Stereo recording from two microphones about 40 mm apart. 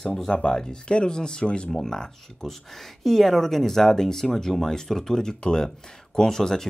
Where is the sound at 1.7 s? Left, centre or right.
Centre.